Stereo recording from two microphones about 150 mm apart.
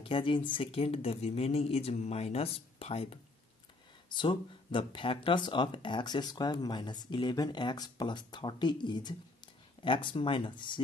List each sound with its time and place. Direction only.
0.0 s speech: 35° left (ahead or behind)